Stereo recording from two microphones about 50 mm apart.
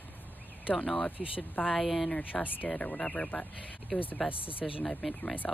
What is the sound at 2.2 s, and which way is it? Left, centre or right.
Speech, left.